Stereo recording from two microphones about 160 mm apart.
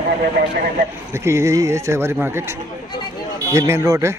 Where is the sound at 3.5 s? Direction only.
20° right (ahead or behind).